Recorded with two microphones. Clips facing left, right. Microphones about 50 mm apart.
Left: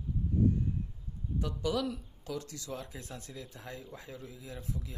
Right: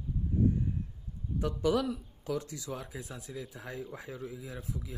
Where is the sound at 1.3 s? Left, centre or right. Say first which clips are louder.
Right 4 dB; right.